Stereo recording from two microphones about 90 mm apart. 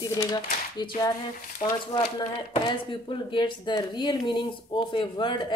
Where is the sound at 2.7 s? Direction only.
65° left (ahead or behind).